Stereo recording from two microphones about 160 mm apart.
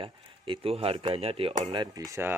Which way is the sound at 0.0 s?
35° right (ahead or behind).